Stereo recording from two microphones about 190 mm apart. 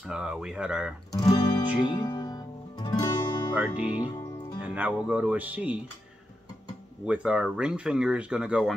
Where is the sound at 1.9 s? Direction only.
20° left (ahead or behind).